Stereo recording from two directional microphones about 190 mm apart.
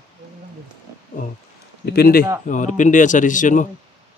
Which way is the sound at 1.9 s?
50° left (ahead or behind).